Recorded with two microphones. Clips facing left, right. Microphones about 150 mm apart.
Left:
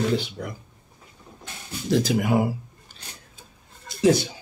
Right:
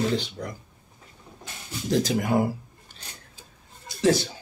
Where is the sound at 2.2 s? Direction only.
10° left (ahead or behind).